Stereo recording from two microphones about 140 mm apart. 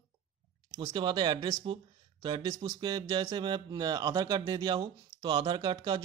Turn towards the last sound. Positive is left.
turn(degrees=-35)  # may be behind; listen again after turning